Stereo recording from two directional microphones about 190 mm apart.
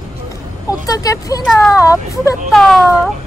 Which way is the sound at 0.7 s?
20° left (ahead or behind).